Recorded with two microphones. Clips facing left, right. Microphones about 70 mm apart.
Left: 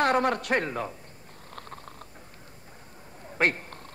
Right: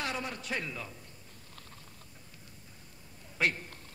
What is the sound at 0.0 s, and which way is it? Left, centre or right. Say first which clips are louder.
Speech: left 13 dB; left.